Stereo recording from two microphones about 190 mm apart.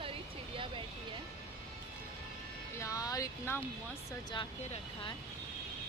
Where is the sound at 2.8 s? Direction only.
20° left (ahead or behind).